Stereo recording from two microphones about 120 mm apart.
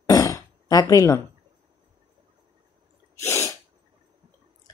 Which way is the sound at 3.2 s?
25° left (ahead or behind).